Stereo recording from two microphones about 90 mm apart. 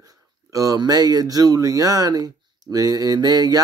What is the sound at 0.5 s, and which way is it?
Speech, 40° right (ahead or behind).